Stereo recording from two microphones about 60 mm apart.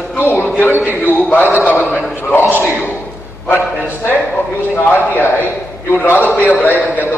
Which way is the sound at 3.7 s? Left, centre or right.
Left.